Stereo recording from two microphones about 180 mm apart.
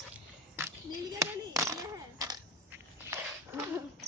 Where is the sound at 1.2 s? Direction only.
20° right (ahead or behind).